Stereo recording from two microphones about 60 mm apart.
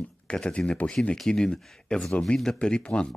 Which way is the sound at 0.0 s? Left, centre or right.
Centre.